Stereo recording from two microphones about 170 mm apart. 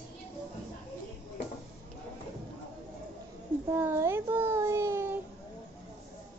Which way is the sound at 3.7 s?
15° right (ahead or behind).